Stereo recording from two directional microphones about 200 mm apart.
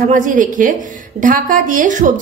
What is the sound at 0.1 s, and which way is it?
A woman's voice, 40° right (ahead or behind).